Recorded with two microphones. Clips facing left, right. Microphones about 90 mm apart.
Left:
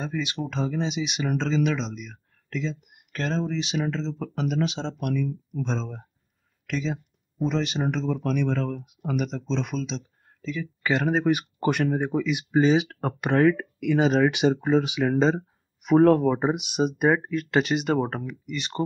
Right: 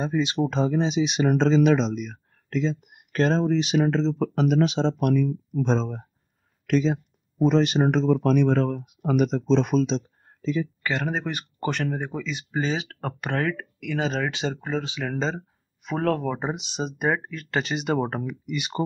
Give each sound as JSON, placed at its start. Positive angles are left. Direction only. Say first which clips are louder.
{"t": 0.0, "sound": "speech", "louder": "right 6 dB", "side_deg": -30}
{"t": 10.8, "sound": "speech", "louder": "left 4 dB", "side_deg": 5}
{"t": 16.3, "sound": "speech", "louder": "left 5 dB", "side_deg": 5}